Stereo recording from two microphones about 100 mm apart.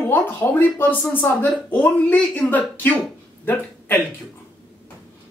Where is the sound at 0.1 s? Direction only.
15° left (ahead or behind).